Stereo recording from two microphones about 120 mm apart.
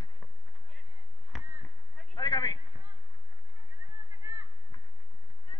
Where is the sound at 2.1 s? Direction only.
40° left (ahead or behind).